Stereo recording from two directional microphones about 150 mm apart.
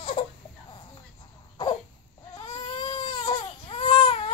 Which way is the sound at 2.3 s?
30° left (ahead or behind).